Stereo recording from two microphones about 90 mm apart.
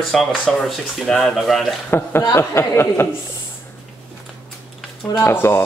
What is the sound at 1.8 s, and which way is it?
Speech, 25° left (ahead or behind).